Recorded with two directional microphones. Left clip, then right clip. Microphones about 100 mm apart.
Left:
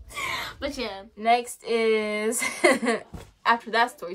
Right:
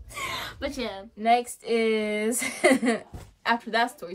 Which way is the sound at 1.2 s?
45° left (ahead or behind).